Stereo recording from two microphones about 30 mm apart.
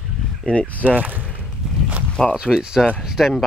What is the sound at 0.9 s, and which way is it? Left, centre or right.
Speech, right.